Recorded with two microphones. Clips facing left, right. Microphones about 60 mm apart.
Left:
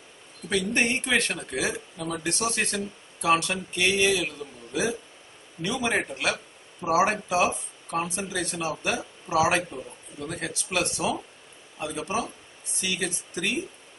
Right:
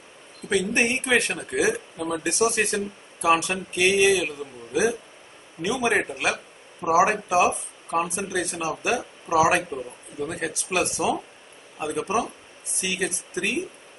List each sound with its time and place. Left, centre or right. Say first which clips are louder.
0.5 s a man's voice: right 2 dB; centre